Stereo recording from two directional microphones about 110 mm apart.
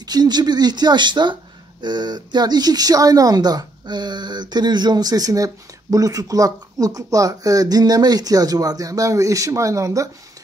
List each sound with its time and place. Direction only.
0.0 s speech: 40° right (ahead or behind)